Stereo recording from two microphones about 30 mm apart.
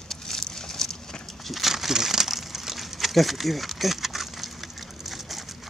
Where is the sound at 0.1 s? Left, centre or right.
Centre.